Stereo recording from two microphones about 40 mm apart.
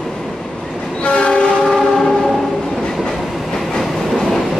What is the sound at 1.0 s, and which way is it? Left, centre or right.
Train, left.